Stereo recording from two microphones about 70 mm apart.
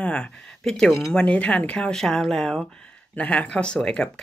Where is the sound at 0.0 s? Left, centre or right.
Centre.